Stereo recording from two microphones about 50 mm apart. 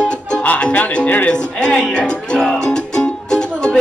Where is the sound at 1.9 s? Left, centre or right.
Centre.